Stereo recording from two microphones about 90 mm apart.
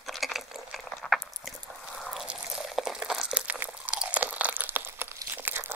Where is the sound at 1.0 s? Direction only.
10° left (ahead or behind).